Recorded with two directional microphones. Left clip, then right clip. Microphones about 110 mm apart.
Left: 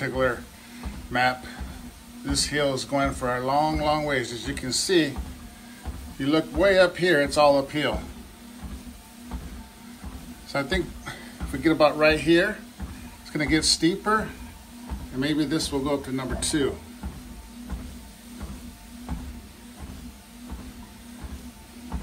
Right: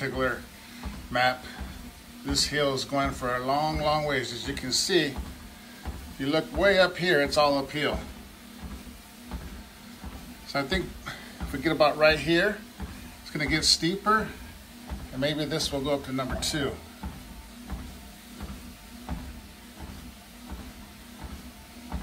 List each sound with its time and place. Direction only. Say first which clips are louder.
0.0 s music: left 4 dB; 5° right (ahead or behind)
2.2 s a man's voice: left 1 dB; 10° right (ahead or behind)
6.1 s a man's voice: left 4 dB; centre (ahead or behind)
10.5 s a man's voice: left 2 dB; centre (ahead or behind)
15.1 s a man's voice: left 3 dB; 20° right (ahead or behind)
16.3 s speech: left 6 dB; 30° right (ahead or behind)